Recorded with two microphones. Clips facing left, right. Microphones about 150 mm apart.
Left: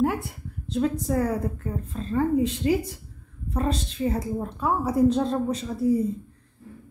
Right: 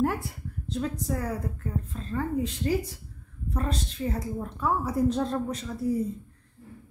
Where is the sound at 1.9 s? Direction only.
20° left (ahead or behind).